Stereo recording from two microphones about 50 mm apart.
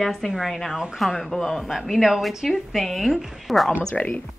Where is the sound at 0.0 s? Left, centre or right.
Centre.